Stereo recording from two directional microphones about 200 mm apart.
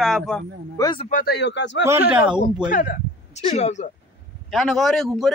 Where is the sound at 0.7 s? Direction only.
20° left (ahead or behind).